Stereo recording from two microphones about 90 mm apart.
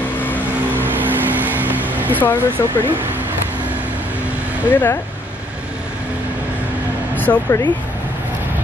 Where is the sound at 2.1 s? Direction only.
20° left (ahead or behind).